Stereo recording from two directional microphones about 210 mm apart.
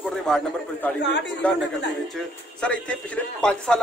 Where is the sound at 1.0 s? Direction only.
55° left (ahead or behind).